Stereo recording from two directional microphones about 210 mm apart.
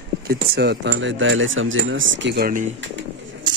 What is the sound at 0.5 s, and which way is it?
Speech, 55° right (ahead or behind).